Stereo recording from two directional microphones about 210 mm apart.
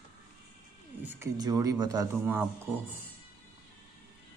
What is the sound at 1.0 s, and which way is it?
Speech, 15° right (ahead or behind).